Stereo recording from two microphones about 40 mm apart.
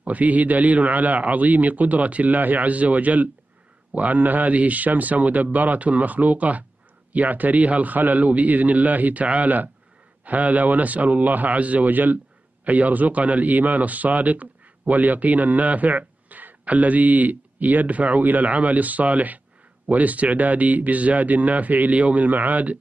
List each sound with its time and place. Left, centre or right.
0.0 s a man's voice: right